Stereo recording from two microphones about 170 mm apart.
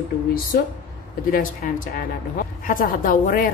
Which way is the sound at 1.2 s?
55° left (ahead or behind).